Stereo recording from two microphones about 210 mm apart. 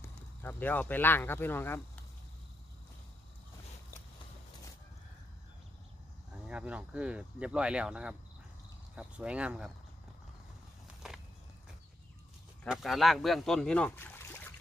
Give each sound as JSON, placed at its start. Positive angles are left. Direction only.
{"t": 0.0, "sound": "speech", "side_deg": 10}
{"t": 6.3, "sound": "speech", "side_deg": -5}
{"t": 11.0, "sound": "walk", "side_deg": 0}
{"t": 12.6, "sound": "speech", "side_deg": 0}